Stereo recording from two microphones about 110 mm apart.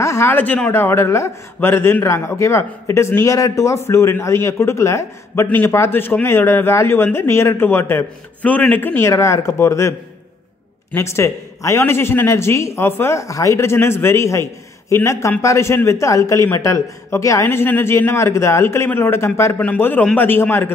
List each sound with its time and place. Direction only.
0.0 s a man's voice: 25° left (ahead or behind)